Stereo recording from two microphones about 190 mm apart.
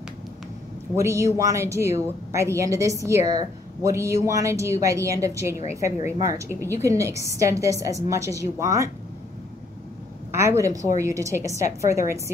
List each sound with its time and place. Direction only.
0.9 s a woman's voice: 15° right (ahead or behind)
6.5 s a woman's voice: 10° left (ahead or behind)
6.8 s a woman's voice: 15° right (ahead or behind)
10.3 s a woman's voice: 15° right (ahead or behind)